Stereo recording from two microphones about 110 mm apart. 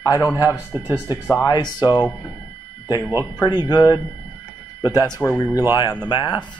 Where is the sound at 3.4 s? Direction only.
40° left (ahead or behind).